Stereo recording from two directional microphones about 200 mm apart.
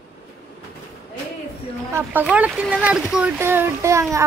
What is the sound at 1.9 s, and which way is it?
Speech, 10° right (ahead or behind).